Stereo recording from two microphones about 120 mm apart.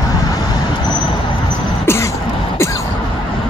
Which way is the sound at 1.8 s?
25° left (ahead or behind).